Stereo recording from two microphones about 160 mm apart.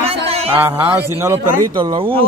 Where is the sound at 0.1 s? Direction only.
40° right (ahead or behind).